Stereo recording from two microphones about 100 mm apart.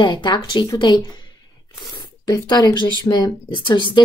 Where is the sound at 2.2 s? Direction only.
40° left (ahead or behind).